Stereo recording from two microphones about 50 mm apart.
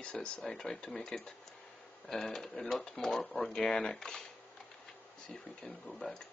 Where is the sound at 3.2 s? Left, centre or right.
Left.